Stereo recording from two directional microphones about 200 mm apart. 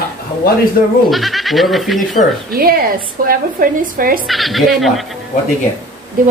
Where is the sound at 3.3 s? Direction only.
45° right (ahead or behind).